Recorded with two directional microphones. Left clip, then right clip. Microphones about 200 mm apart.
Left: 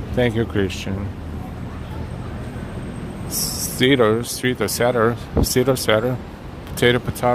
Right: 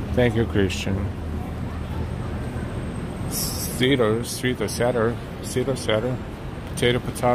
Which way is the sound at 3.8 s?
25° left (ahead or behind).